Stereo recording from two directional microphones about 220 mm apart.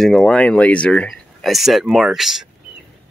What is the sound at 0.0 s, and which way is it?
Speech, 5° left (ahead or behind).